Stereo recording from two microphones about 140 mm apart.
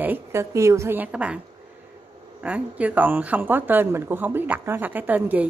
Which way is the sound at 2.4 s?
10° right (ahead or behind).